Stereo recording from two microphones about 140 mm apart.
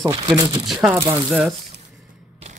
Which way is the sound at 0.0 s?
25° right (ahead or behind).